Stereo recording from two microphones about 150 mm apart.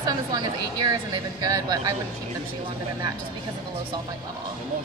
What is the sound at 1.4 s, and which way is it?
Speech, 25° right (ahead or behind).